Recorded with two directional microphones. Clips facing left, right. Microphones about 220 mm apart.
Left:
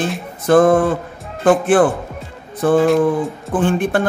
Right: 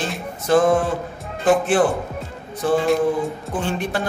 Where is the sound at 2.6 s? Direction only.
55° left (ahead or behind).